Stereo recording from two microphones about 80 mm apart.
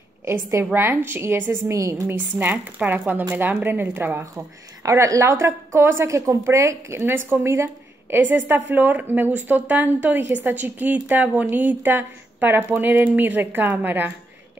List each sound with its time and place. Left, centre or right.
0.2 s a woman's voice: right
1.7 s a woman's voice: right
2.0 s a woman's voice: right
4.8 s a woman's voice: right
8.2 s a woman's voice: right